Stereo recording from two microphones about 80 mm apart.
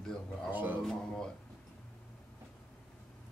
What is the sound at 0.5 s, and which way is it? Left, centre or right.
Speech, right.